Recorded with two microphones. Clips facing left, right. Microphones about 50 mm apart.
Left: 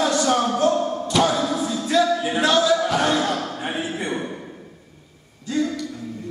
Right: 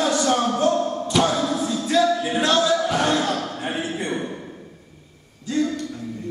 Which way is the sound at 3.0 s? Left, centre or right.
Centre.